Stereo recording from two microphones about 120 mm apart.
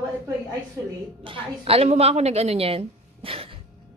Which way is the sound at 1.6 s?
55° right (ahead or behind).